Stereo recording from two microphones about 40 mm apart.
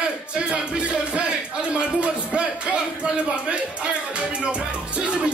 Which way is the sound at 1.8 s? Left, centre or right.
Right.